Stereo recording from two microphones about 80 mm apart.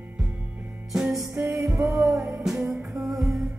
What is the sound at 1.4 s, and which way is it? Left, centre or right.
Music, right.